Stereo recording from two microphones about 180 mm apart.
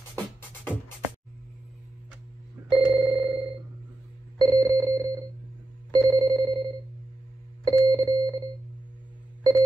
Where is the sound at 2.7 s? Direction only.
25° right (ahead or behind).